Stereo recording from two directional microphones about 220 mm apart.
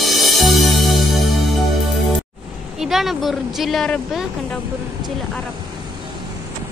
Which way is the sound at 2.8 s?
Centre (ahead or behind).